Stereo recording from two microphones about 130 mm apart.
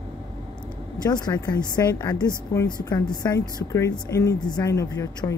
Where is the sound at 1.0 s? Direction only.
30° left (ahead or behind).